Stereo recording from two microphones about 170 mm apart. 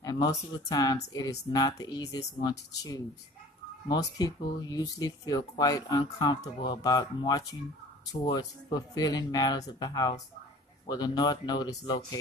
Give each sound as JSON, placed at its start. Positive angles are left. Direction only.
{"t": 0.0, "sound": "speech", "side_deg": 20}